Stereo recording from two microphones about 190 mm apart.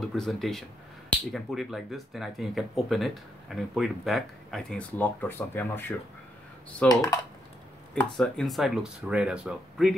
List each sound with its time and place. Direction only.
0.1 s speech: centre (ahead or behind); by 7.2 s 20° left (ahead or behind)
7.9 s speech: 5° left (ahead or behind)